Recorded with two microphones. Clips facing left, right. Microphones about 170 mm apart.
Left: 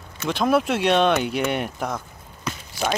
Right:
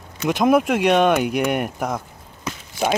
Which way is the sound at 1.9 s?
15° right (ahead or behind).